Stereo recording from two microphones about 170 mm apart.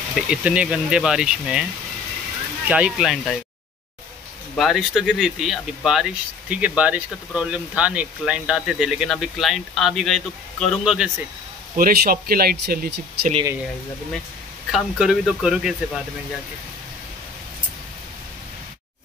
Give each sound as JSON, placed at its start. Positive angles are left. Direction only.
{"t": 0.1, "sound": "speech", "side_deg": -5}
{"t": 2.7, "sound": "speech", "side_deg": -5}
{"t": 4.6, "sound": "speech", "side_deg": 0}
{"t": 11.7, "sound": "speech", "side_deg": -60}
{"t": 14.7, "sound": "speech", "side_deg": 0}